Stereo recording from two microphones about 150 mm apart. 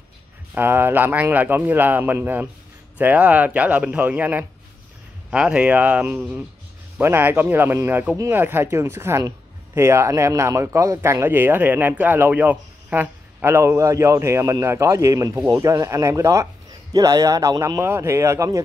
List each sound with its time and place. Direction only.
0.6 s speech: 15° right (ahead or behind)